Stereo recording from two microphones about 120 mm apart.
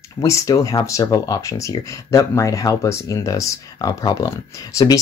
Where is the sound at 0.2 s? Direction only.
25° left (ahead or behind).